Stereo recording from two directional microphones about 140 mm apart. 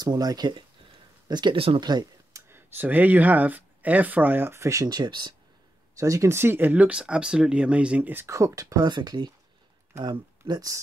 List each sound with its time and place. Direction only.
0.0 s speech: 25° right (ahead or behind)
2.4 s speech: 15° right (ahead or behind)